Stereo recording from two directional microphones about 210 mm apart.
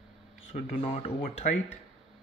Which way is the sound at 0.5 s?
30° left (ahead or behind).